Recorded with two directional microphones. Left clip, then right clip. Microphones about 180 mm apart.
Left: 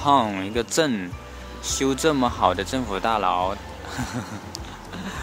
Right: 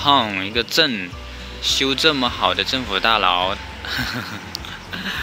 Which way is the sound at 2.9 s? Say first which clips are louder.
Right 5 dB; 5° left (ahead or behind).